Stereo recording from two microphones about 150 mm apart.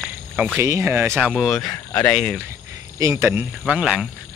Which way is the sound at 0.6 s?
15° right (ahead or behind).